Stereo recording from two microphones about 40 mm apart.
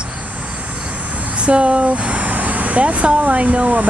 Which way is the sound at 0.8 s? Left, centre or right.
Right.